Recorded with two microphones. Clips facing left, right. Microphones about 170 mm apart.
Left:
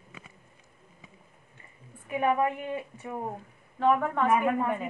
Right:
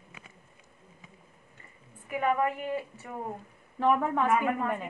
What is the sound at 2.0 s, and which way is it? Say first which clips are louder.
A woman's voice: left 2 dB; 20° left (ahead or behind).